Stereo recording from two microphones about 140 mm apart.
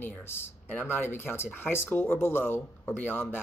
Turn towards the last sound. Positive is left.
turn(degrees=15)  # may be behind; listen again after turning